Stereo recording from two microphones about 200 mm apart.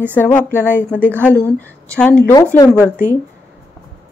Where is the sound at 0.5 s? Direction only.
10° right (ahead or behind).